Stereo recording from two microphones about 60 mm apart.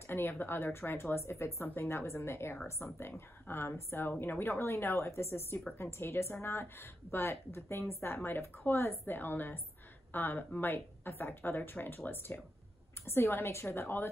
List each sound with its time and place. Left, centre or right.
0.0 s a woman's voice: left